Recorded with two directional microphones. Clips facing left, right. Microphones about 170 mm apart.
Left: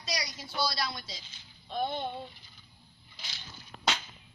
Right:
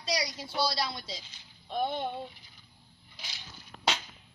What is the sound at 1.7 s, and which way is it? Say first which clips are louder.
Speech: right 1 dB; 10° right (ahead or behind).